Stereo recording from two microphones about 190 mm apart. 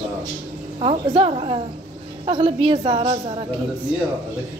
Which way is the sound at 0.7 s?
30° right (ahead or behind).